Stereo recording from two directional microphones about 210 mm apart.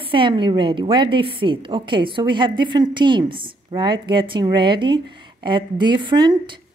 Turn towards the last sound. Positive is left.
turn(degrees=-20)  # may be behind; listen again after turning